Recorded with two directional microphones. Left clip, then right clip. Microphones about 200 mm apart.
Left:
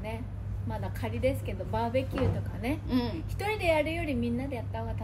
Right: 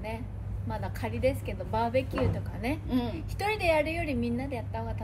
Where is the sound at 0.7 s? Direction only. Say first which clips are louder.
Right 1 dB; centre (ahead or behind).